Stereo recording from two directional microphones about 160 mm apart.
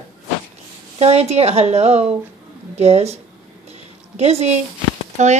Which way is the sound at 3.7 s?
40° right (ahead or behind).